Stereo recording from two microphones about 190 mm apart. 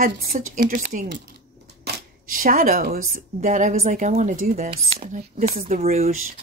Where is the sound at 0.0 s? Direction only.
50° right (ahead or behind).